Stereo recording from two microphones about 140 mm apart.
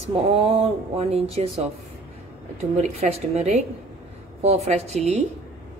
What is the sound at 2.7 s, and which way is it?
A woman's voice, 50° right (ahead or behind).